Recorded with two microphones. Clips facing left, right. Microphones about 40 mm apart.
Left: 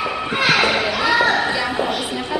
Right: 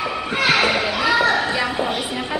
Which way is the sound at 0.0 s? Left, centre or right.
Centre.